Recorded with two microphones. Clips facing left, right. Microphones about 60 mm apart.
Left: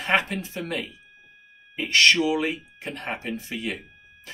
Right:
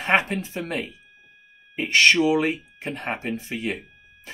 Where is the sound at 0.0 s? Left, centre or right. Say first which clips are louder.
Right 2 dB; right.